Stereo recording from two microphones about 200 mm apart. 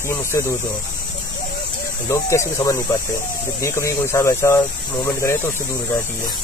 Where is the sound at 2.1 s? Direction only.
15° left (ahead or behind).